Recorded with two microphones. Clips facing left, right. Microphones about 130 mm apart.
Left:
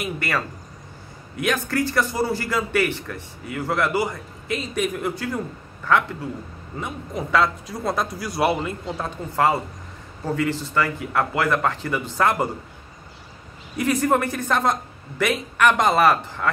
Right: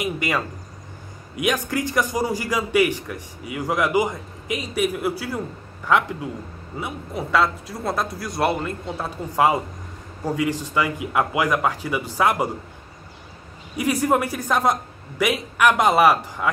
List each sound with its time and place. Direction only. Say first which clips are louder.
0.0 s a man's voice: right 2 dB; 15° right (ahead or behind); by 8.7 s 5° left (ahead or behind)
8.8 s a man's voice: even; 10° right (ahead or behind)
13.7 s a man's voice: even; 10° right (ahead or behind)